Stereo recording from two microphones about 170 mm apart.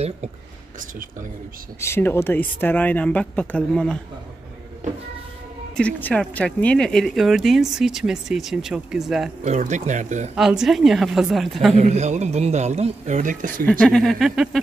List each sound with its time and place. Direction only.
1.8 s speech: 15° left (ahead or behind)
4.8 s train: 45° right (ahead or behind)
5.8 s speech: 10° left (ahead or behind)
9.4 s speech: 45° right (ahead or behind)
10.3 s speech: 5° right (ahead or behind)
11.7 s a man's voice: 40° right (ahead or behind)
13.7 s speech: 5° left (ahead or behind)